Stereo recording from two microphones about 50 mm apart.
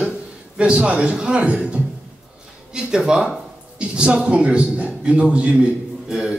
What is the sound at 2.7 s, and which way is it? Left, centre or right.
Speech, centre.